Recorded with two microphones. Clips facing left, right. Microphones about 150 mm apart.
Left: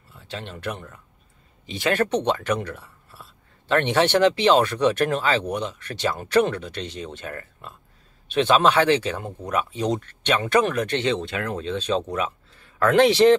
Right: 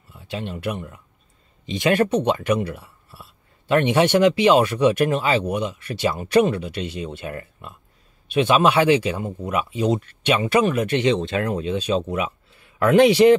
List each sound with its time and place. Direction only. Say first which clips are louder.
0.1 s speech: right 5 dB; 15° right (ahead or behind)